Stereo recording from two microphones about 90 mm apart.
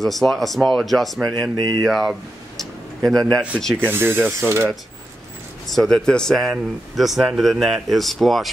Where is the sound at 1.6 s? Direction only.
45° right (ahead or behind).